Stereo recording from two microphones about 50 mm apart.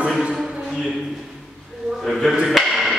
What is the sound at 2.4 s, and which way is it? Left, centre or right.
Music, centre.